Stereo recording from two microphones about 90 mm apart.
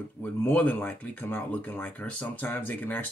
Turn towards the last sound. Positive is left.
turn(degrees=20)  # may be behind; listen again after turning